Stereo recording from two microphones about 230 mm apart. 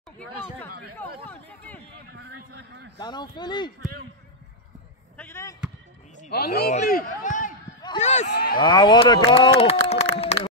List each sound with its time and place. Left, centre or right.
1.2 s a man's voice: centre
2.1 s a man's voice: right
3.0 s speech: centre
5.1 s speech: centre
6.3 s speech: left
8.3 s speech: left
8.5 s speech: centre
10.2 s run: left